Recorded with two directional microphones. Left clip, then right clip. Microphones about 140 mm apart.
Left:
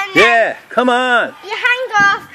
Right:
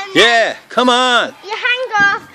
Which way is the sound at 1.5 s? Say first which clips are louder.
Left 4 dB; 75° left (ahead or behind).